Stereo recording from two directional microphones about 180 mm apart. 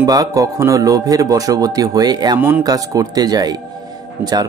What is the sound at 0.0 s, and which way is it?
Speech, 20° right (ahead or behind).